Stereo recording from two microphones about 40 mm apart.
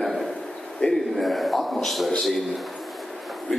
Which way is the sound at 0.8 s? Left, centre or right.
Left.